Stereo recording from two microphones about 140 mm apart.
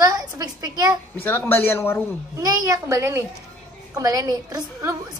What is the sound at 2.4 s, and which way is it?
A woman's voice, 25° right (ahead or behind).